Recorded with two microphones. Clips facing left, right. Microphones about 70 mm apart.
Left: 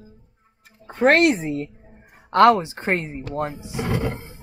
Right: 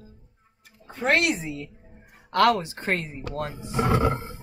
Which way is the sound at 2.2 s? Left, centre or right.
Left.